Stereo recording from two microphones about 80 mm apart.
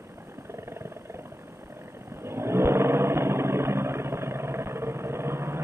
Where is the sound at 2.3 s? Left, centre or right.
Right.